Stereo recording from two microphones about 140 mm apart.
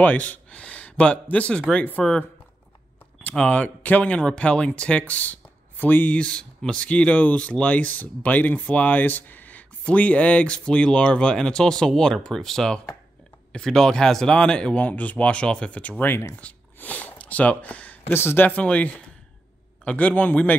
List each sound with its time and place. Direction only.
0.0 s speech: 10° left (ahead or behind)